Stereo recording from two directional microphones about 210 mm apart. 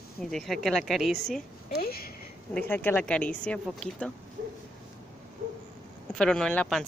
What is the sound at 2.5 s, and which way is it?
A woman's voice, 10° left (ahead or behind).